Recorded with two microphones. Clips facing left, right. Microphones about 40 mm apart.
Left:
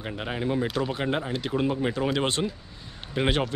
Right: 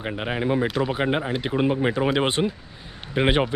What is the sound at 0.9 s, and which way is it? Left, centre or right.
Speech, right.